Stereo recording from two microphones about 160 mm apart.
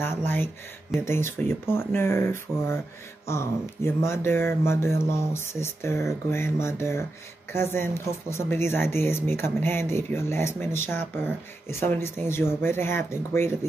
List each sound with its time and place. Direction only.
0.0 s speech: 15° left (ahead or behind)